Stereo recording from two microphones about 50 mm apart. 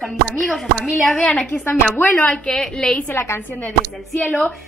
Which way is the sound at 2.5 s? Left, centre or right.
Centre.